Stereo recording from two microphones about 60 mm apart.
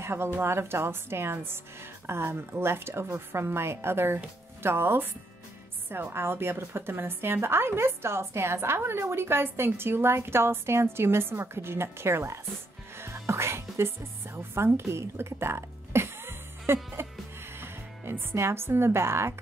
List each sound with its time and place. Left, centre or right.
0.0 s a woman's voice: right
6.1 s a woman's voice: right
12.9 s music: right
17.6 s speech: right